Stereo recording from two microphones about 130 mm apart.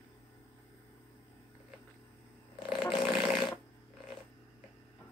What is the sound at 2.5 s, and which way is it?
Fart, 40° left (ahead or behind).